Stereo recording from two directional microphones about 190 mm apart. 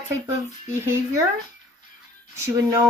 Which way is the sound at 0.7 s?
15° right (ahead or behind).